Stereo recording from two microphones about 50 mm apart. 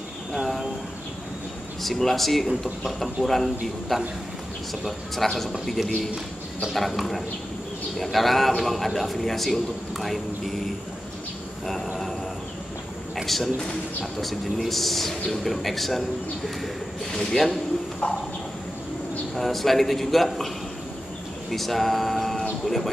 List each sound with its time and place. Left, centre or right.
0.3 s a sound: centre
1.8 s a man's voice: centre
6.7 s a man's voice: centre
11.6 s speech: centre
13.2 s a man's voice: centre
17.1 s a man's voice: centre
18.0 s bird: left
19.3 s a man's voice: centre
21.5 s a sound: centre